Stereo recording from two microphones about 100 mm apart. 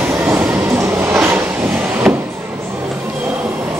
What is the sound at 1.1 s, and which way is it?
Vehicle, 25° right (ahead or behind).